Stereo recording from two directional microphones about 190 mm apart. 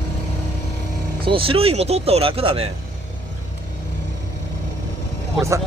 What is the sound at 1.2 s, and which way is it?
Speech, 30° right (ahead or behind).